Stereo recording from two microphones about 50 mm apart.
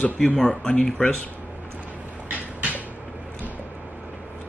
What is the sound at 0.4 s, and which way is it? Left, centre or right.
Speech, centre.